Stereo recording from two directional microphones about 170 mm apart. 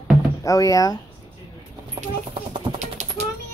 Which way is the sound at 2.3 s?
35° right (ahead or behind).